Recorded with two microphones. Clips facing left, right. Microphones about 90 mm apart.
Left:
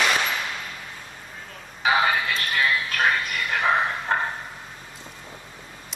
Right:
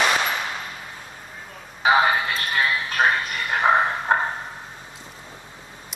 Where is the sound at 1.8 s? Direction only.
25° right (ahead or behind).